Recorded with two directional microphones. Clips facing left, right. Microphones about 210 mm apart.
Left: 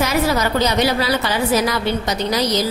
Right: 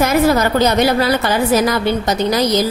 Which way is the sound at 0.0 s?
50° right (ahead or behind).